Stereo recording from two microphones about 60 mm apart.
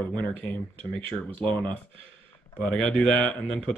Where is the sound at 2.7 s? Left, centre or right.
Centre.